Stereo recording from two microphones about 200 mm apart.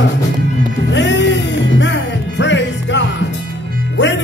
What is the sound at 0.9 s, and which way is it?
Music, 65° left (ahead or behind).